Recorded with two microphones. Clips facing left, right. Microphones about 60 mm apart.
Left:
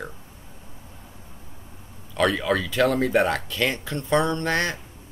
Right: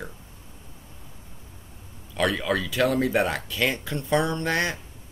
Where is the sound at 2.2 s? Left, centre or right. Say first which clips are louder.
Left 2 dB; centre.